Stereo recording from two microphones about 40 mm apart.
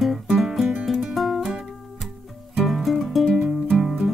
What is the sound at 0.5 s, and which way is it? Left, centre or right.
Music, centre.